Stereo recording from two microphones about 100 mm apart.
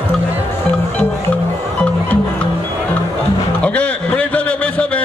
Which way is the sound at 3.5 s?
15° left (ahead or behind).